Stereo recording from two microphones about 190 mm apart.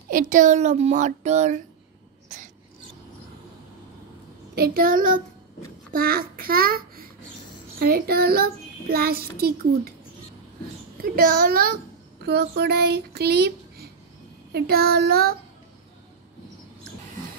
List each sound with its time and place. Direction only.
0.1 s a child's voice: 45° right (ahead or behind)
2.2 s filing: 40° right (ahead or behind)
4.6 s child singing: 50° right (ahead or behind)
5.9 s a child's voice: 50° right (ahead or behind)
7.8 s child singing: 55° right (ahead or behind)
11.1 s child singing: 50° right (ahead or behind)
12.3 s speech: 60° right (ahead or behind)
14.5 s child singing: 55° right (ahead or behind)